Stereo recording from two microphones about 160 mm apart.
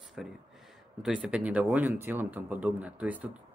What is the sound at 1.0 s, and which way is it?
Speech, 5° right (ahead or behind).